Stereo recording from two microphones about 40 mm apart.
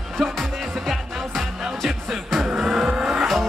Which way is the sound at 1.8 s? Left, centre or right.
Centre.